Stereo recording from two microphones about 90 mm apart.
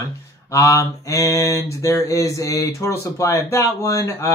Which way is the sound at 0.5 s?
35° left (ahead or behind).